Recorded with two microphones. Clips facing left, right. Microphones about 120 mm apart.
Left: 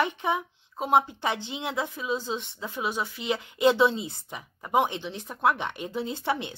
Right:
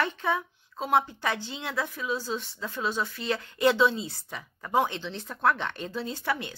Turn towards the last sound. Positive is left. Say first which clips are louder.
# left 2 dB
turn(degrees=20)  # may be behind; listen again after turning